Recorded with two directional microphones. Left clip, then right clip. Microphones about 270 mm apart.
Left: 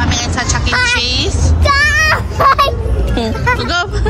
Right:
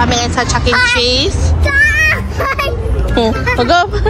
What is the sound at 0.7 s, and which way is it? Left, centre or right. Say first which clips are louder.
Speech: right 2 dB; left.